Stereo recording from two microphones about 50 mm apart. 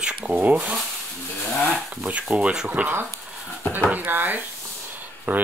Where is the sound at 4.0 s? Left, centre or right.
Right.